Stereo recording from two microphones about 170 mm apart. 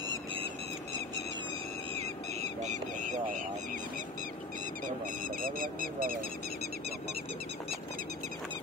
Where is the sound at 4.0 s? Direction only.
50° right (ahead or behind); by 7.2 s 65° right (ahead or behind).